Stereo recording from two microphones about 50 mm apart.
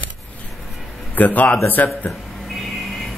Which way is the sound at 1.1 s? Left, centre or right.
Left.